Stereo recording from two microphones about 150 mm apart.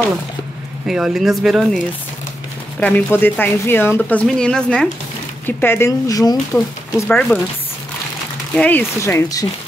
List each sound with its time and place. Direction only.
0.8 s speech: 5° right (ahead or behind)
2.8 s speech: 15° left (ahead or behind)
5.6 s speech: 15° left (ahead or behind)
7.1 s speech: 5° left (ahead or behind)
8.5 s speech: 10° left (ahead or behind)